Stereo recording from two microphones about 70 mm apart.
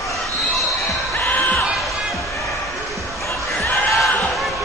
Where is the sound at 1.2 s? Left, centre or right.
Left.